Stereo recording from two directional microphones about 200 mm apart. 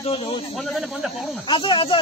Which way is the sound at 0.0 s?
25° left (ahead or behind).